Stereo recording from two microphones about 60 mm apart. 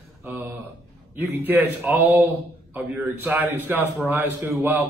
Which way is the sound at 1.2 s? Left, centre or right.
Right.